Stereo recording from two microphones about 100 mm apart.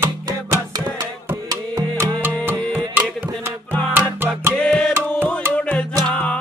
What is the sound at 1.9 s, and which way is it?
Music, 40° right (ahead or behind).